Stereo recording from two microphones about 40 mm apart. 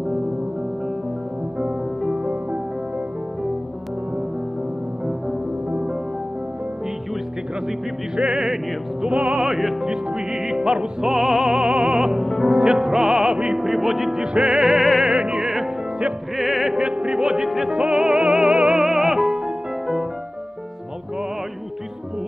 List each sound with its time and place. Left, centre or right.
2.1 s music: right
5.7 s music: right
8.2 s music: right
9.4 s music: centre
9.8 s music: centre
12.0 s music: centre
12.4 s music: right
13.6 s music: centre
14.2 s music: right
14.6 s music: centre
15.0 s music: right
16.3 s music: centre
16.7 s music: right